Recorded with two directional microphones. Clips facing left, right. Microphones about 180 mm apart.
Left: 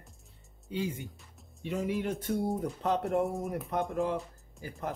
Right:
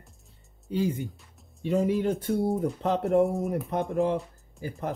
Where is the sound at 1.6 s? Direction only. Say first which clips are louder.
Right 7 dB; 35° right (ahead or behind).